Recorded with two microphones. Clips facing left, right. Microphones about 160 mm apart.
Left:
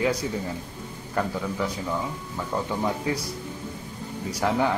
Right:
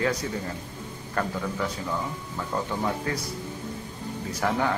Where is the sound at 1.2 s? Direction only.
15° left (ahead or behind).